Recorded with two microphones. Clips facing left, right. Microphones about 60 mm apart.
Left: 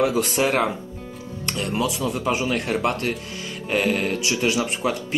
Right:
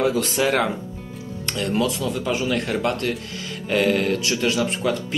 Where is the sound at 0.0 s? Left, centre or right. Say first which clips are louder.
Even; left.